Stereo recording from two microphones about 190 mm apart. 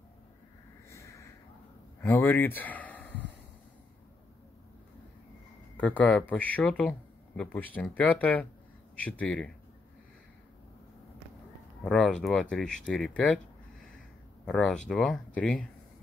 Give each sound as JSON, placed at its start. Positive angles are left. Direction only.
{"t": 0.8, "sound": "a sound", "side_deg": 15}
{"t": 2.0, "sound": "speech", "side_deg": 10}
{"t": 5.8, "sound": "speech", "side_deg": 10}
{"t": 11.8, "sound": "speech", "side_deg": 5}
{"t": 14.4, "sound": "speech", "side_deg": 5}